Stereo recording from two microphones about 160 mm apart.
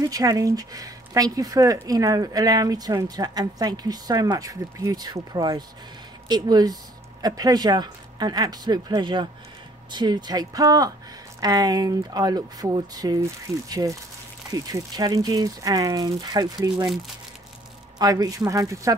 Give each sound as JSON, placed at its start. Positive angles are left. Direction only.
{"t": 0.0, "sound": "speech", "side_deg": -20}
{"t": 17.9, "sound": "speech", "side_deg": -25}